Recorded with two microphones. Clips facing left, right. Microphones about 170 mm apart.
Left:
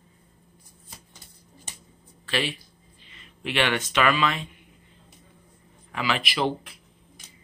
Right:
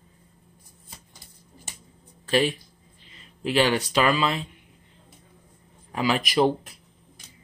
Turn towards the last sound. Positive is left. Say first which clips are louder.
# right 5 dB
turn(degrees=-45)  # may be behind; listen again after turning